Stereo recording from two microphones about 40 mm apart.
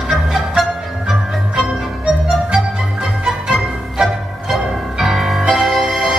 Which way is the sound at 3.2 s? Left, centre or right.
Centre.